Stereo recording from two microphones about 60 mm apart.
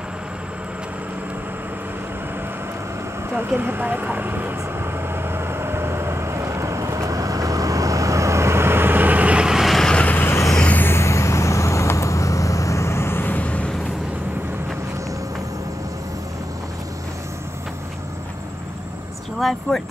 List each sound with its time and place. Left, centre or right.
3.3 s speech: right
5.1 s vehicle: right
9.4 s vehicle: centre
9.7 s vehicle: centre
10.0 s vehicle: left
10.8 s vehicle: left
19.3 s vehicle: centre